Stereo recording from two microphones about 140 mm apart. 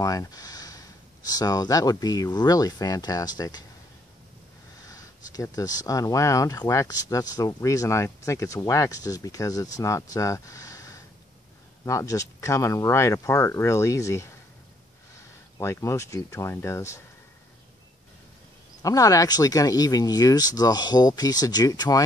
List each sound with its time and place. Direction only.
0.0 s speech: 25° left (ahead or behind)
4.8 s speech: 25° left (ahead or behind)
15.5 s speech: 20° left (ahead or behind)
18.8 s speech: 25° left (ahead or behind)